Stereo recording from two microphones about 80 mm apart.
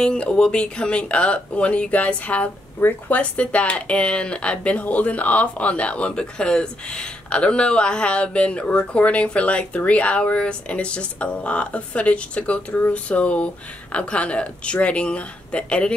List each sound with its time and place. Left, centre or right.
0.0 s speech: centre